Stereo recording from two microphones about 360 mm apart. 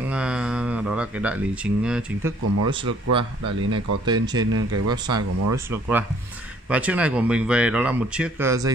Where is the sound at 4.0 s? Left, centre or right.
Centre.